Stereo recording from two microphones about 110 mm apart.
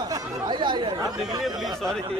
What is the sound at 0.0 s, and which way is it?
Chatter, 30° right (ahead or behind).